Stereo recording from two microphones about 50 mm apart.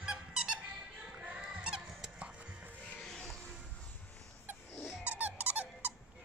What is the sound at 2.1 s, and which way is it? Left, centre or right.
Music, right.